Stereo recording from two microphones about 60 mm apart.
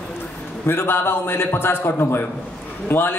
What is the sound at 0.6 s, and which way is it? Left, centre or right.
A man's voice, left.